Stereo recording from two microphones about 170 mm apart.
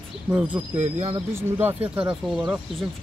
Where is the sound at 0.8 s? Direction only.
45° right (ahead or behind).